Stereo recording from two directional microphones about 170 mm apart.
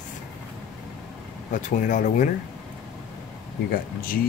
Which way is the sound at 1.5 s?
45° left (ahead or behind).